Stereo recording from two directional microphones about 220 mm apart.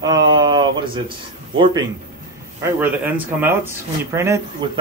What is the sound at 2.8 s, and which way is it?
Speech, 10° right (ahead or behind).